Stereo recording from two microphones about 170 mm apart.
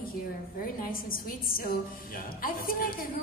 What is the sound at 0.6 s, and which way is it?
Music, 55° left (ahead or behind).